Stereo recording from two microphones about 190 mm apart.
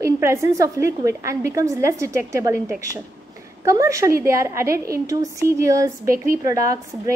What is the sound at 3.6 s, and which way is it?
A woman's voice, 15° right (ahead or behind).